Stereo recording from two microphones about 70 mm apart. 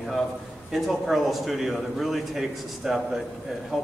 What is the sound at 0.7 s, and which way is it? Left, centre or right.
A man's voice, centre.